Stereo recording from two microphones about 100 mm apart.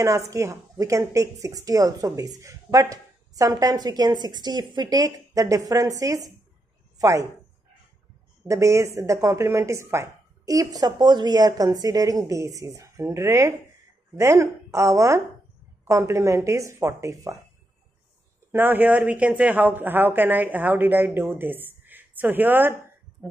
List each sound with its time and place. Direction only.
0.0 s a woman's voice: 30° right (ahead or behind)
8.5 s speech: 30° right (ahead or behind)
18.5 s a man's voice: 20° right (ahead or behind)